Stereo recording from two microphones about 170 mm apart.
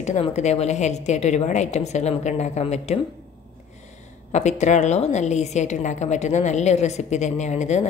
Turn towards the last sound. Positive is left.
turn(degrees=45)  # may be behind; listen again after turning